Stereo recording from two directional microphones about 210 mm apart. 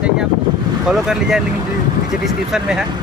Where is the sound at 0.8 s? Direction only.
Centre (ahead or behind).